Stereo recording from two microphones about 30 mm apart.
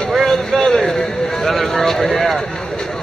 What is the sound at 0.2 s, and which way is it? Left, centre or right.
Vehicle, centre.